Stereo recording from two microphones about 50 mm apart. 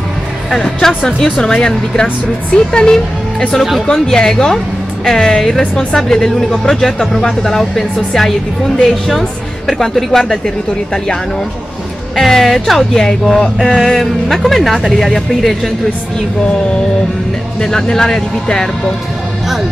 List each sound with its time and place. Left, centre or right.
0.8 s speech: centre
12.2 s speech: centre
17.6 s speech: centre